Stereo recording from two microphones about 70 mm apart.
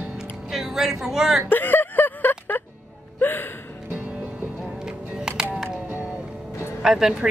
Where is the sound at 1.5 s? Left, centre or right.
Left.